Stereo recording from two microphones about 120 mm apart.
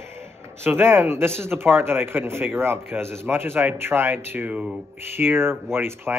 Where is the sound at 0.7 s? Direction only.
20° right (ahead or behind).